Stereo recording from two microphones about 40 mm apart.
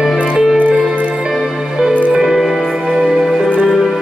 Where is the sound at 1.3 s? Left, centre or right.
Centre.